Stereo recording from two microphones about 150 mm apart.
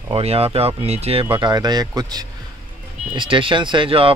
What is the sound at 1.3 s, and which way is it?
Speech, 30° right (ahead or behind).